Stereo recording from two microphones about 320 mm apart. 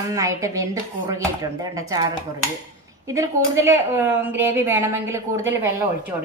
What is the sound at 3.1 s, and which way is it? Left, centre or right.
A woman's voice, centre.